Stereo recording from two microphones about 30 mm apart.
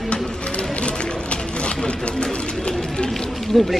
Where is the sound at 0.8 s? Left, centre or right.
Left.